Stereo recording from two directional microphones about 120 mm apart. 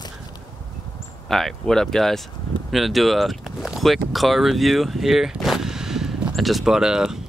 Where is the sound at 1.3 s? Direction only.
5° left (ahead or behind).